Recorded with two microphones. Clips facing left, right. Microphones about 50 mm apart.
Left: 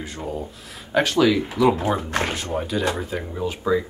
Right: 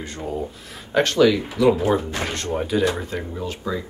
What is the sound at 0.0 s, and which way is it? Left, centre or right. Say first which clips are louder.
Speech: right 2 dB; centre.